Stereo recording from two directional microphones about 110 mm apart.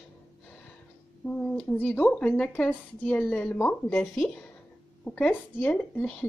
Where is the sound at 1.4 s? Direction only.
15° left (ahead or behind).